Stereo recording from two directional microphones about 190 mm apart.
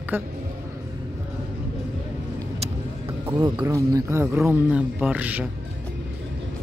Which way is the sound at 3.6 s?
15° right (ahead or behind).